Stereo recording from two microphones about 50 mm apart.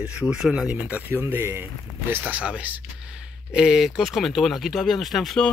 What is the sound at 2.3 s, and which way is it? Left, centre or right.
Speech, right.